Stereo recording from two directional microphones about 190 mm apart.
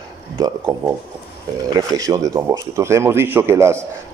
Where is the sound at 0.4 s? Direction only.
15° right (ahead or behind).